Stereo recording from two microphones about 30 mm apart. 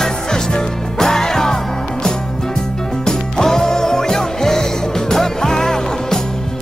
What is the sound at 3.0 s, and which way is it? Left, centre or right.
Music, centre.